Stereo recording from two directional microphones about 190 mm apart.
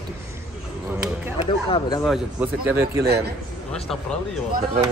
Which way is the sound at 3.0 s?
55° right (ahead or behind).